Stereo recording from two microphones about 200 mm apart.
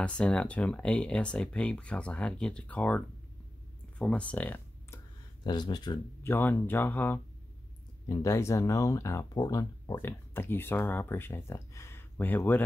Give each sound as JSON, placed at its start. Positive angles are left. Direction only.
{"t": 0.0, "sound": "speech", "side_deg": 5}
{"t": 4.0, "sound": "speech", "side_deg": 5}
{"t": 5.4, "sound": "speech", "side_deg": 20}
{"t": 6.3, "sound": "speech", "side_deg": 10}